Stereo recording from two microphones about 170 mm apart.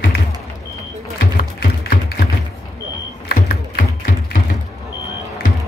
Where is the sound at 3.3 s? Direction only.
65° left (ahead or behind).